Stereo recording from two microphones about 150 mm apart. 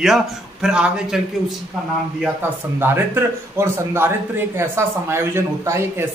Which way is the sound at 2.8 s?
15° right (ahead or behind).